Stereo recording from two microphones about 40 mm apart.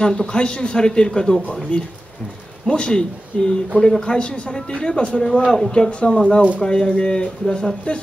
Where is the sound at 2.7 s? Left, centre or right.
Left.